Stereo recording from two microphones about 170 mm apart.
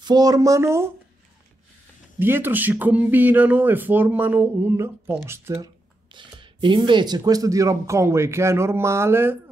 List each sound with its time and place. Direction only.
0.0 s speech: 25° right (ahead or behind)
2.1 s speech: 15° right (ahead or behind)
6.1 s speech: 30° right (ahead or behind)